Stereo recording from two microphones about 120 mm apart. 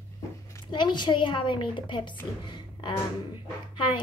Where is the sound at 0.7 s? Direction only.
40° left (ahead or behind).